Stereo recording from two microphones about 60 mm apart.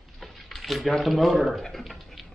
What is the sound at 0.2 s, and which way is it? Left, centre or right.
Speech, centre.